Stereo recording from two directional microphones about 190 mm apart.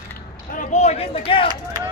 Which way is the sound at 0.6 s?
35° left (ahead or behind).